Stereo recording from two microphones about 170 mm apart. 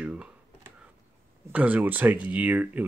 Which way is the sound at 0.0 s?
5° right (ahead or behind).